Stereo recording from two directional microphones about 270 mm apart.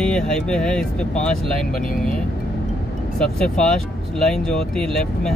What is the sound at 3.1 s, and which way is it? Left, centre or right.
Speech, centre.